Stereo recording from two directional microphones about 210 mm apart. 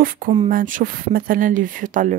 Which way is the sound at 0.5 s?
40° right (ahead or behind).